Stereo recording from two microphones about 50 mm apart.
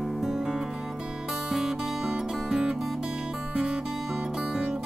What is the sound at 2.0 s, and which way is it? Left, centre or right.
Music, centre.